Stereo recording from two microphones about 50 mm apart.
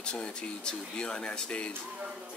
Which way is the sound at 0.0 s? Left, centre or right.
Centre.